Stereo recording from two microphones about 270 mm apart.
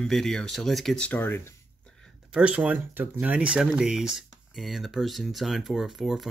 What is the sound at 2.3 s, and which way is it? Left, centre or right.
Speech, centre.